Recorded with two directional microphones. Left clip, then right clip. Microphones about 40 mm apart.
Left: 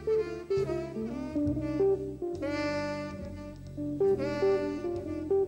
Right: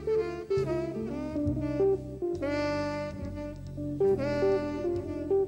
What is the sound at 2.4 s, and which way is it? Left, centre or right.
Saxophone, left.